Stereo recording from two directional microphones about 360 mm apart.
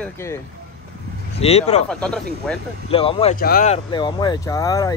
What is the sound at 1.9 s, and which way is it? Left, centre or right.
Speech, centre.